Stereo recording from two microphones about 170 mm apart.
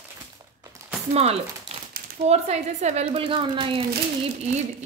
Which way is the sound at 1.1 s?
35° right (ahead or behind).